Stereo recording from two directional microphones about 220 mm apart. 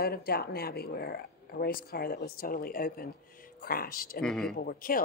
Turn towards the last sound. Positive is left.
turn(degrees=40)  # may be behind; listen again after turning